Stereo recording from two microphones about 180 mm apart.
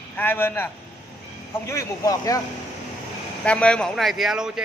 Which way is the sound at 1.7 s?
15° left (ahead or behind).